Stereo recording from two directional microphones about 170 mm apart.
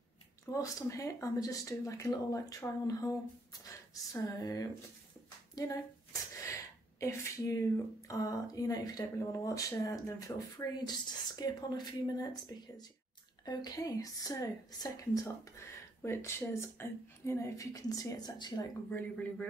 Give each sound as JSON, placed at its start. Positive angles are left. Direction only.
{"t": 0.5, "sound": "speech", "side_deg": 20}
{"t": 18.9, "sound": "speech", "side_deg": 10}